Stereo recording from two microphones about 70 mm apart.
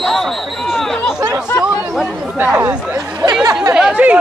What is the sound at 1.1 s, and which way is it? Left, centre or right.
Speech, right.